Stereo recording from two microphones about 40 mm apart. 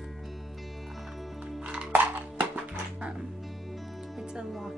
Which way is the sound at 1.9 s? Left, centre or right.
Right.